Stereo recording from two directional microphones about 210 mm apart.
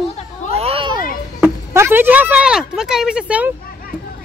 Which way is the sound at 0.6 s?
25° right (ahead or behind).